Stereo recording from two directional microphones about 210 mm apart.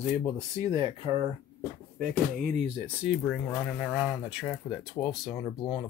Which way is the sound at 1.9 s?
40° right (ahead or behind).